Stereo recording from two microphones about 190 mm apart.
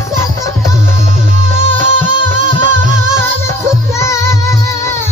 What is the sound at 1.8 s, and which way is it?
Music, 45° right (ahead or behind).